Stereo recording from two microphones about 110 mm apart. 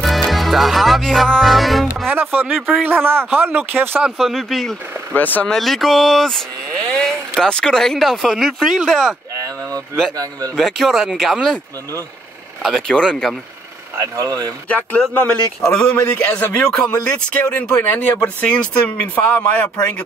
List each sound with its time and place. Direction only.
0.0 s music: centre (ahead or behind)
2.0 s speech: 20° right (ahead or behind)
4.0 s speech: centre (ahead or behind)
5.1 s speech: 15° left (ahead or behind)
5.5 s speech: centre (ahead or behind)
9.4 s a sound: 35° right (ahead or behind)
10.1 s speech: 35° right (ahead or behind)
10.5 s speech: centre (ahead or behind)
12.6 s speech: 5° left (ahead or behind)
14.1 s speech: 30° right (ahead or behind)
14.7 s speech: 15° left (ahead or behind)